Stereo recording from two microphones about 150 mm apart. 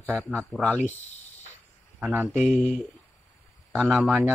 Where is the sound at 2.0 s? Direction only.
10° right (ahead or behind).